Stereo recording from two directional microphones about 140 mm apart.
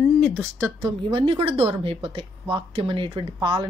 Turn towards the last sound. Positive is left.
turn(degrees=-35)  # may be behind; listen again after turning